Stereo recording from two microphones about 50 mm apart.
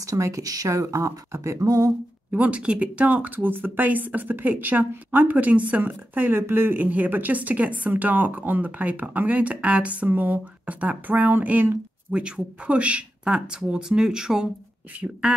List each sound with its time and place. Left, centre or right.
0.2 s speech: right
2.3 s speech: right
6.4 s speech: right
12.1 s speech: centre